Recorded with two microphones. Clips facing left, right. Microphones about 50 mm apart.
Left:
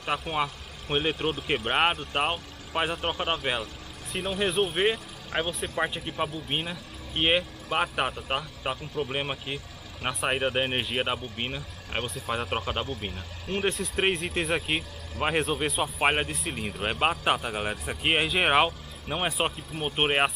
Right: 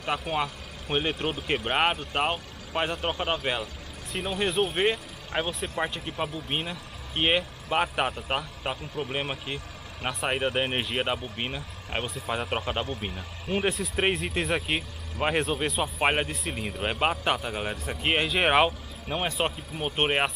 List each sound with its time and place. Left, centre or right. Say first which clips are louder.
0.0 s speech: even; centre